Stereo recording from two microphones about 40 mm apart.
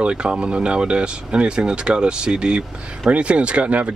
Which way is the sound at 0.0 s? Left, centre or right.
Right.